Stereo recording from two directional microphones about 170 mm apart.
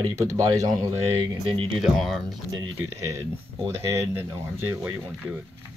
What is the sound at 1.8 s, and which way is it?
Speech, centre (ahead or behind).